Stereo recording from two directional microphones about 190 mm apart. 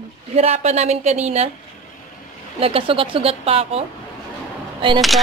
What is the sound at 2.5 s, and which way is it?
A woman's voice, 30° right (ahead or behind).